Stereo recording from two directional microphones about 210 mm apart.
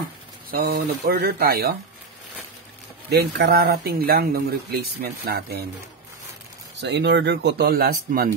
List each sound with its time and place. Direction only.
0.5 s speech: 45° right (ahead or behind)
3.1 s speech: 50° right (ahead or behind)
6.8 s speech: 55° right (ahead or behind)